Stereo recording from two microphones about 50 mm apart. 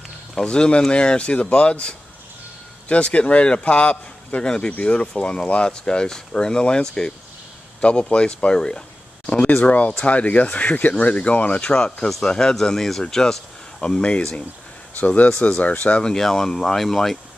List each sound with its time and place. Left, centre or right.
0.3 s speech: centre
16.0 s speech: centre